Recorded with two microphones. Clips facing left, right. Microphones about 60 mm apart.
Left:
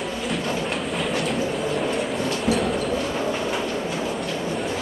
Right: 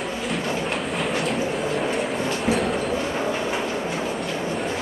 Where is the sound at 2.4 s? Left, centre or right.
Centre.